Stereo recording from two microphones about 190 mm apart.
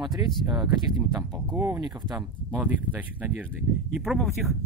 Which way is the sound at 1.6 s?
15° right (ahead or behind).